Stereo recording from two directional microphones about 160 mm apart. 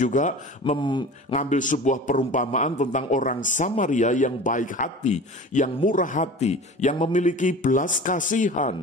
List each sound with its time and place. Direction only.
0.0 s a man's voice: 50° left (ahead or behind)